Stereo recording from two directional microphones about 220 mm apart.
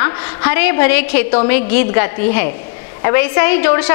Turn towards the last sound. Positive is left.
turn(degrees=15)  # may be behind; listen again after turning